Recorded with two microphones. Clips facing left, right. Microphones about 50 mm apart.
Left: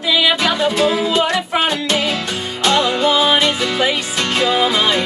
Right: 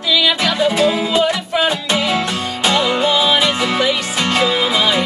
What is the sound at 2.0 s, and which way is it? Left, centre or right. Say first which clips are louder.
Music: right 3 dB; right.